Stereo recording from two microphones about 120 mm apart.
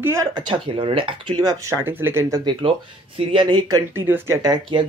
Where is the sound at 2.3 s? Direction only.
40° right (ahead or behind).